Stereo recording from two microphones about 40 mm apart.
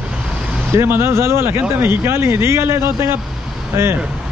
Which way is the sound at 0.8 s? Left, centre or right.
Right.